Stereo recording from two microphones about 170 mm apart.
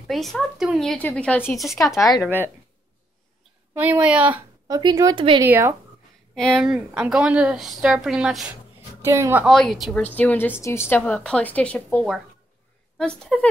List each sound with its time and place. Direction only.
0.0 s a woman's voice: centre (ahead or behind)
3.7 s a woman's voice: 10° right (ahead or behind)
4.6 s a woman's voice: 20° right (ahead or behind)
6.3 s a woman's voice: 5° left (ahead or behind)
9.0 s a woman's voice: 15° right (ahead or behind)
9.5 s a woman's voice: centre (ahead or behind)
10.1 s a woman's voice: 10° left (ahead or behind)